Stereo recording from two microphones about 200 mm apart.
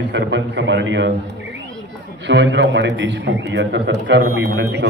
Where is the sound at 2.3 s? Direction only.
60° right (ahead or behind).